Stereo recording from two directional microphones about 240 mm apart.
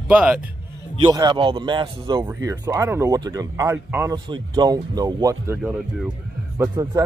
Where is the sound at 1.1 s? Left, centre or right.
Centre.